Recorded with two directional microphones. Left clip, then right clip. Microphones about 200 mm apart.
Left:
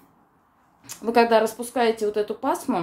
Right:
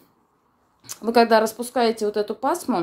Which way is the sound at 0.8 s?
35° right (ahead or behind).